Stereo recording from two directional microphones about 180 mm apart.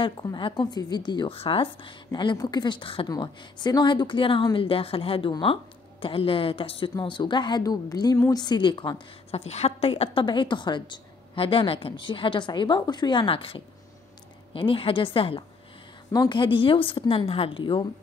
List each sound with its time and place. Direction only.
0.0 s a woman's voice: 25° left (ahead or behind)
9.3 s a woman's voice: 35° left (ahead or behind)